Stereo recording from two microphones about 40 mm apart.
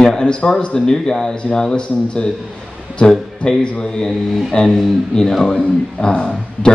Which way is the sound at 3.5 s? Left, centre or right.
Centre.